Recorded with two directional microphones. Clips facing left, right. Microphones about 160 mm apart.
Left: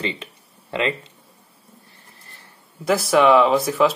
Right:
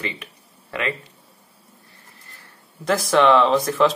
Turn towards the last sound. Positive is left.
turn(degrees=10)  # may be behind; listen again after turning